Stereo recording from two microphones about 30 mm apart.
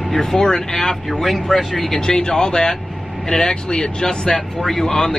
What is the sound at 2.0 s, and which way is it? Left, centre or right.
Speech, left.